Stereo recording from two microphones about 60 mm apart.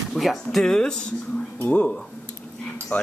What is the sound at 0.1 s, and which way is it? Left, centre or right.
Speech, centre.